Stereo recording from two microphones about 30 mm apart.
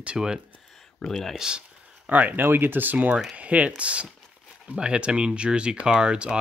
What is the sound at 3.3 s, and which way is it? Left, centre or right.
Speech, right.